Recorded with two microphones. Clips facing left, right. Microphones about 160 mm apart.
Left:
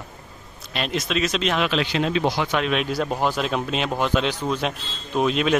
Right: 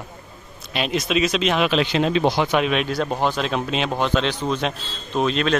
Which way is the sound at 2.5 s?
5° right (ahead or behind).